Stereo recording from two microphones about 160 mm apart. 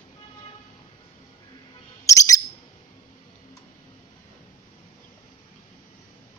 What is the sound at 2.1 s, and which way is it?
Bird, 20° left (ahead or behind).